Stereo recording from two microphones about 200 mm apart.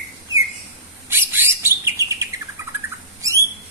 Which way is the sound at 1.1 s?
10° right (ahead or behind).